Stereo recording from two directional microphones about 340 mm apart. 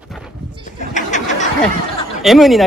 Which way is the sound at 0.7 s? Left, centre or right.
Left.